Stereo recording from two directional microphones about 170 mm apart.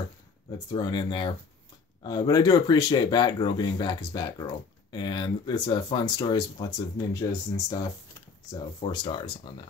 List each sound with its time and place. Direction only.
0.7 s speech: 25° left (ahead or behind)